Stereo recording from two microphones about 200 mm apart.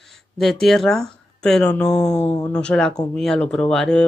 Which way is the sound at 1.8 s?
35° left (ahead or behind).